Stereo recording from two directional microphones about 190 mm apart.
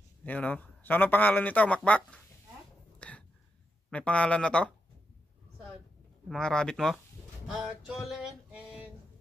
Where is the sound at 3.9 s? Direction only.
5° left (ahead or behind).